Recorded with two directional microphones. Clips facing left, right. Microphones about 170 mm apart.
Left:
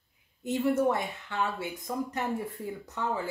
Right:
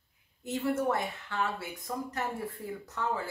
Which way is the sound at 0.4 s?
15° left (ahead or behind).